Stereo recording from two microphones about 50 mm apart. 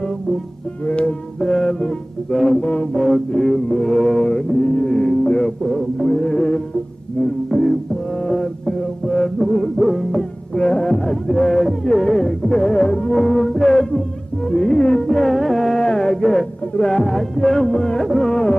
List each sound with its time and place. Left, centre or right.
0.8 s music: left
2.6 s music: left
2.9 s music: centre
3.8 s mantra: centre
5.6 s music: centre
14.5 s music: centre
15.8 s music: centre